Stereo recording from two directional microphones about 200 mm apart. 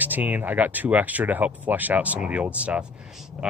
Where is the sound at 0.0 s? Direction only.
10° right (ahead or behind).